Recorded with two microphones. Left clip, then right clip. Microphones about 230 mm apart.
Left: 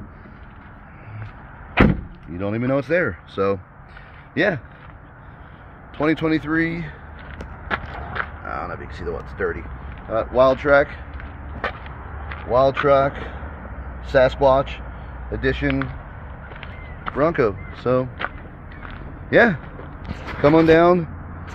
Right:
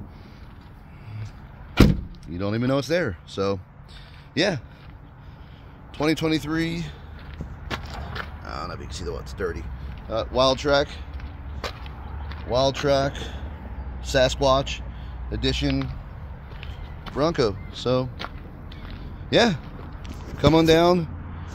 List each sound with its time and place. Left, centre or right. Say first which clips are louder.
2.2 s speech: left 2 dB; right; by 4.6 s centre
5.9 s speech: left 3 dB; centre
7.2 s vehicle: left 7 dB; right
7.8 s a sound: left 6 dB; centre
9.4 s speech: left 5 dB; centre
12.4 s speech: left 5 dB; centre
14.1 s speech: left 4 dB; centre
17.1 s speech: left 4 dB; centre
19.2 s speech: left 5 dB; centre